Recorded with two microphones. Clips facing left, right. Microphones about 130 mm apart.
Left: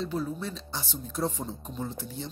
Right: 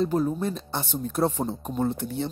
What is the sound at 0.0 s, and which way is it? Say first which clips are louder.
Speech: right 8 dB; 45° right (ahead or behind).